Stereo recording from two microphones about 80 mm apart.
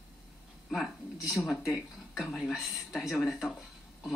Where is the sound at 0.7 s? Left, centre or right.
Centre.